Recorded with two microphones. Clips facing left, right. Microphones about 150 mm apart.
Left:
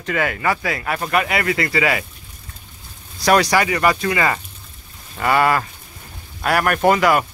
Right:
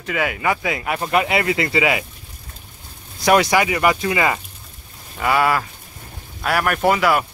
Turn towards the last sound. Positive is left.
turn(degrees=-5)  # may be behind; listen again after turning